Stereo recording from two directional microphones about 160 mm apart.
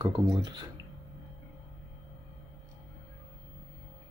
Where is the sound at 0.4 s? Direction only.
25° right (ahead or behind).